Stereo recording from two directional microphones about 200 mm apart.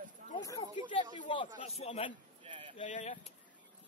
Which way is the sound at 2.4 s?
25° right (ahead or behind).